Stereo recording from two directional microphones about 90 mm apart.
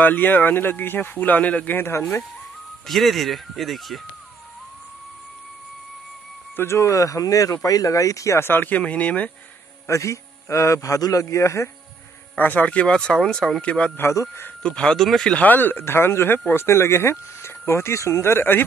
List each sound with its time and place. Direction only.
0.0 s speech: 20° left (ahead or behind)
2.9 s speech: centre (ahead or behind)
6.5 s speech: 30° left (ahead or behind)
9.8 s speech: 35° left (ahead or behind)
12.4 s speech: 20° left (ahead or behind)
13.9 s speech: 30° left (ahead or behind)
14.6 s speech: 10° left (ahead or behind)
15.3 s speech: 20° left (ahead or behind)